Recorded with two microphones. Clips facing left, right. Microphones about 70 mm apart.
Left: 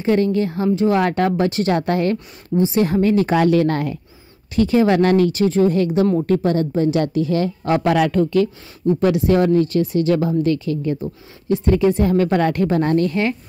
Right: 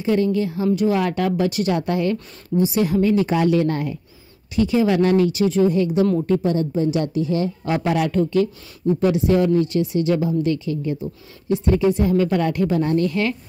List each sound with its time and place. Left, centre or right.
0.0 s speech: left
2.5 s a woman's voice: left
2.8 s speech: left
4.6 s speech: left
7.9 s speech: left
8.2 s speech: left
13.1 s a woman's voice: left